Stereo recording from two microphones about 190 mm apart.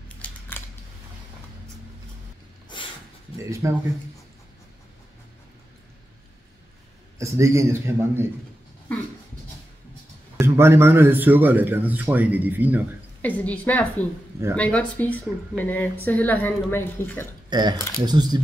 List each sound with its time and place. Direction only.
0.2 s scissors: 10° left (ahead or behind)
3.3 s speech: 15° right (ahead or behind)
7.2 s speech: 15° right (ahead or behind)
10.4 s speech: 15° right (ahead or behind)
13.4 s speech: 10° left (ahead or behind)
17.5 s speech: 20° right (ahead or behind)